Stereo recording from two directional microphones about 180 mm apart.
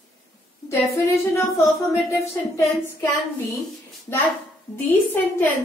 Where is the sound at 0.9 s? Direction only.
15° left (ahead or behind).